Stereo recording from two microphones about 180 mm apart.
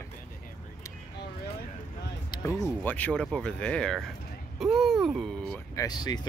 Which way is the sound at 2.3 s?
25° left (ahead or behind).